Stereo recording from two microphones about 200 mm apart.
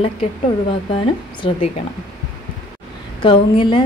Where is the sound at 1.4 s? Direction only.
30° left (ahead or behind).